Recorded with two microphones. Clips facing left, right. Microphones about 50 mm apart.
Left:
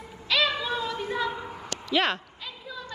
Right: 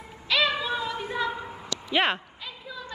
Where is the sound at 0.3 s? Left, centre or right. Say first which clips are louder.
Right 1 dB; centre.